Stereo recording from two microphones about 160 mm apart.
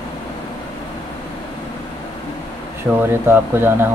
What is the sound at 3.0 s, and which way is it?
Speech, 15° right (ahead or behind).